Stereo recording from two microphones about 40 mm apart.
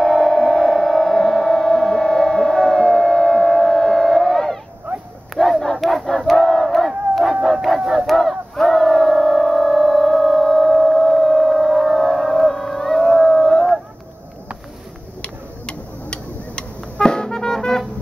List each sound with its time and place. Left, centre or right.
0.0 s music: centre
5.3 s battle cry: centre
7.7 s crowd: centre
8.1 s battle cry: centre
10.9 s whale vocalization: centre
13.4 s a sound: centre
15.2 s tick-tock: left